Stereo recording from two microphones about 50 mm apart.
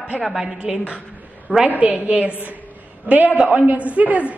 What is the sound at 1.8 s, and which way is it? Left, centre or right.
A woman's voice, right.